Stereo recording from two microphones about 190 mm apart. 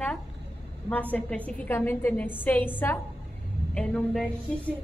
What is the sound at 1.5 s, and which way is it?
A woman's voice, 10° left (ahead or behind).